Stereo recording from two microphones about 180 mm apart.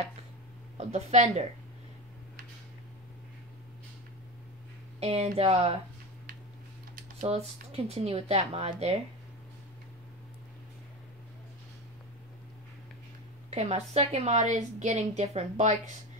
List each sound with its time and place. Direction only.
0.7 s a woman's voice: 40° right (ahead or behind)
5.0 s a woman's voice: 35° right (ahead or behind)
7.2 s a woman's voice: 35° right (ahead or behind)
13.6 s a woman's voice: 35° right (ahead or behind)